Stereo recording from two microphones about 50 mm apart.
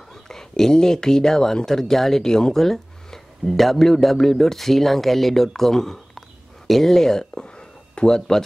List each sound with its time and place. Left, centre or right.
0.1 s speech: centre